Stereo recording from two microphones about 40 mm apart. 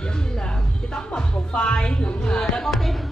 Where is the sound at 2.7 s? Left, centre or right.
Centre.